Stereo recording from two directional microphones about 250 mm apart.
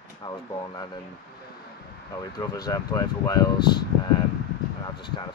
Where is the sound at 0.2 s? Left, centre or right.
Centre.